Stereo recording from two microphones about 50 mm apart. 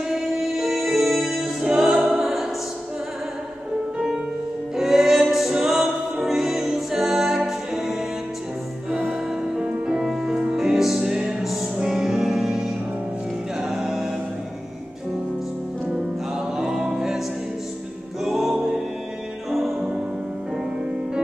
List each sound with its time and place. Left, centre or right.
0.1 s music: centre
4.7 s music: centre
9.6 s music: centre
16.5 s music: centre
18.2 s music: centre